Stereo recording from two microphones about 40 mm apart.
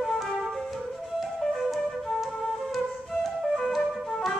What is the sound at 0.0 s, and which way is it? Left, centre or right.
Flute, centre.